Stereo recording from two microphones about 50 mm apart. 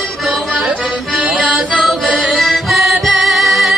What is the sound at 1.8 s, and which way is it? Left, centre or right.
Music, centre.